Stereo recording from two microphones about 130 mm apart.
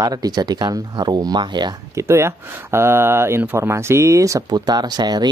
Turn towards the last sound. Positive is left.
turn(degrees=-30)  # may be behind; listen again after turning